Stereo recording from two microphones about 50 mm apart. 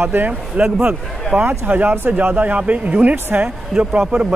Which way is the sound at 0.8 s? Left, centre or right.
Right.